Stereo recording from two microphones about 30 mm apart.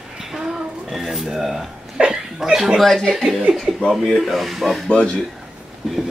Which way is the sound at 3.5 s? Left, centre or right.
Right.